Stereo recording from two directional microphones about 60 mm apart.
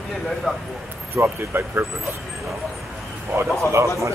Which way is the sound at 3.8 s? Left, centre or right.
Right.